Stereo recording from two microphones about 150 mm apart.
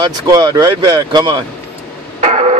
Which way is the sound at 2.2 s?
50° right (ahead or behind).